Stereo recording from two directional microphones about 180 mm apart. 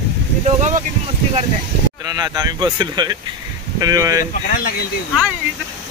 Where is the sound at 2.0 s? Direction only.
20° right (ahead or behind).